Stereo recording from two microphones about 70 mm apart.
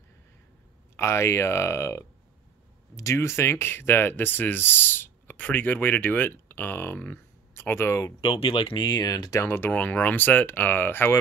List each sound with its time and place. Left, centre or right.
0.9 s speech: left
8.7 s speech: left
9.4 s speech: left
9.7 s speech: left